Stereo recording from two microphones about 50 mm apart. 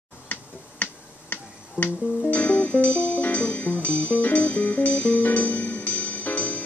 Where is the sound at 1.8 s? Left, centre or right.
Left.